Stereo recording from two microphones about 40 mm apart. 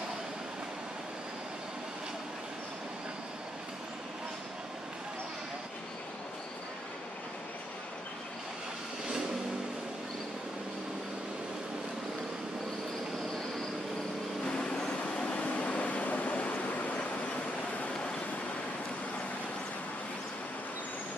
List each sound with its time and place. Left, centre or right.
14.4 s vehicle: centre; by 17.2 s left